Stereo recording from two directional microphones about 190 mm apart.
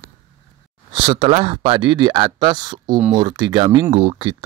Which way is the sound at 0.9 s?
25° right (ahead or behind).